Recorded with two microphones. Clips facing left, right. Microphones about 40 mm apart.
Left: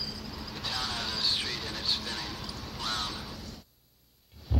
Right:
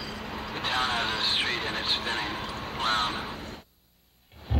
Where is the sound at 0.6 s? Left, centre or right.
Right.